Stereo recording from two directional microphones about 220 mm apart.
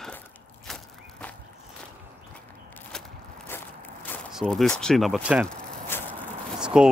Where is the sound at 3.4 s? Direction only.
10° left (ahead or behind).